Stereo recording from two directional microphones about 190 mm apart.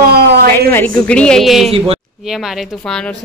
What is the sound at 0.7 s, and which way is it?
A woman's voice, 10° left (ahead or behind).